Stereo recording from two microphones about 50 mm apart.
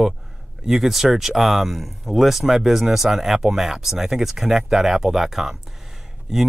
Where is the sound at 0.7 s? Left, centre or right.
Centre.